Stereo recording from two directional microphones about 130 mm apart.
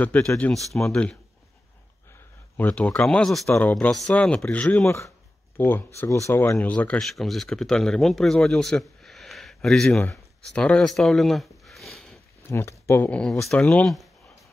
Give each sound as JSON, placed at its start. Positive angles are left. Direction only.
{"t": 0.0, "sound": "speech", "side_deg": 10}
{"t": 2.5, "sound": "speech", "side_deg": 10}
{"t": 12.4, "sound": "speech", "side_deg": 20}